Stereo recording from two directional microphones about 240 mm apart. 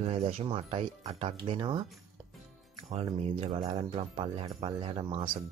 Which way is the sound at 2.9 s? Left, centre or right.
Right.